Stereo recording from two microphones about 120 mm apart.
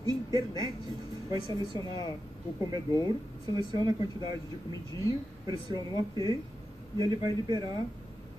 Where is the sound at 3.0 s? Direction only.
35° right (ahead or behind).